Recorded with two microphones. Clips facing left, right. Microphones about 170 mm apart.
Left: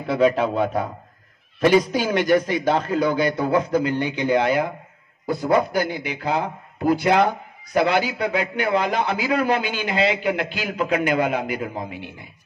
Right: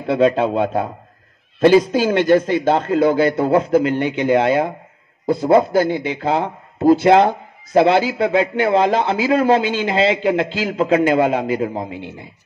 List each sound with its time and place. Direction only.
0.0 s speech: 25° right (ahead or behind)